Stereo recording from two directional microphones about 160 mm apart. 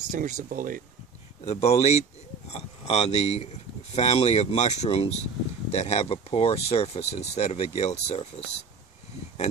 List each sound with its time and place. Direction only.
0.1 s speech: 55° right (ahead or behind)
1.4 s speech: 40° left (ahead or behind)